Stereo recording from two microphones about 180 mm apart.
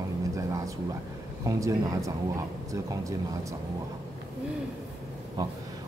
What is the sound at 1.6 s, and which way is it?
A man's voice, 15° right (ahead or behind).